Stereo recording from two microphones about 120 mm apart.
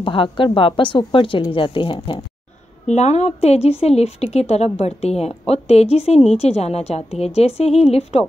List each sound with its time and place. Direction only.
0.0 s a woman's voice: 45° left (ahead or behind)
2.9 s a woman's voice: 65° left (ahead or behind)